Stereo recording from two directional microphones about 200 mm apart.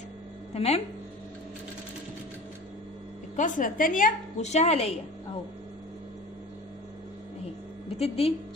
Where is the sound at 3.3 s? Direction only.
40° left (ahead or behind).